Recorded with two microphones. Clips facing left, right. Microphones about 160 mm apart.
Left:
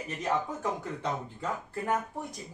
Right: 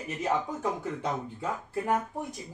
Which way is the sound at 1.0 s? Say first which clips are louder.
Right 1 dB; 10° right (ahead or behind).